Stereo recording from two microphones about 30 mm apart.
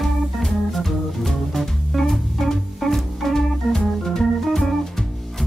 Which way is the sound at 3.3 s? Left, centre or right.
Centre.